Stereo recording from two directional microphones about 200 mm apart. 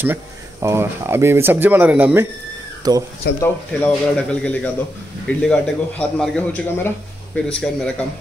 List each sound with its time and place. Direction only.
0.0 s speech: 10° right (ahead or behind)
2.8 s speech: 20° right (ahead or behind)
3.3 s a man's voice: 10° left (ahead or behind)